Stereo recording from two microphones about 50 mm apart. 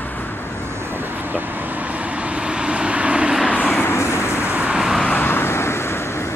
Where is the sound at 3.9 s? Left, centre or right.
Left.